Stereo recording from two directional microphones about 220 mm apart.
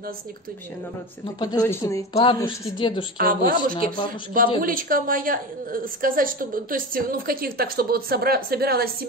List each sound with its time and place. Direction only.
1.4 s a woman's voice: 15° left (ahead or behind)
2.1 s a woman's voice: 25° left (ahead or behind)
3.2 s a woman's voice: 40° right (ahead or behind)